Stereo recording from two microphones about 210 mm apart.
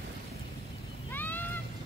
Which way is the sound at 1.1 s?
10° left (ahead or behind).